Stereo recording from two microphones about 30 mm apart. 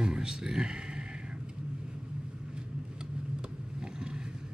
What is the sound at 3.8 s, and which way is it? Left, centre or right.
Vehicle, right.